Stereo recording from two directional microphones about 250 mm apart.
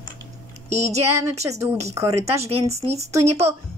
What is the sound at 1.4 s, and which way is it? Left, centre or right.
A woman's voice, centre.